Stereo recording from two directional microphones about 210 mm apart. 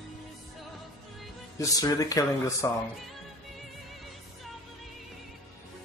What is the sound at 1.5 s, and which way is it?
Speech, 15° left (ahead or behind).